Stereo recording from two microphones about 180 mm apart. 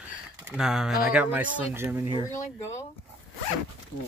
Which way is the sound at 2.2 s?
15° left (ahead or behind).